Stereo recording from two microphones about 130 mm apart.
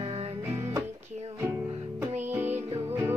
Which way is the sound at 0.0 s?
50° right (ahead or behind).